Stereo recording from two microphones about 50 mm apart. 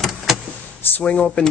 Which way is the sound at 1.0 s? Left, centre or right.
Left.